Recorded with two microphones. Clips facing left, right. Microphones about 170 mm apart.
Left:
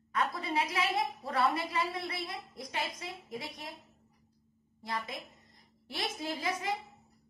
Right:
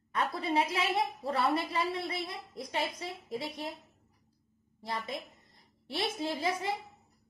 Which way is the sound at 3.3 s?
30° right (ahead or behind).